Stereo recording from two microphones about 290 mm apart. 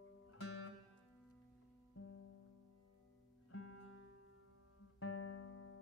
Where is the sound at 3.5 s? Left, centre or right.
Left.